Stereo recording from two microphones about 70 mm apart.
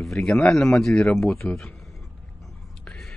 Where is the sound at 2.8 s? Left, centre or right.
Centre.